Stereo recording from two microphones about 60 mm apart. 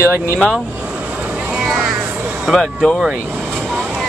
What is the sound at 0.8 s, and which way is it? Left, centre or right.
Vehicle, right.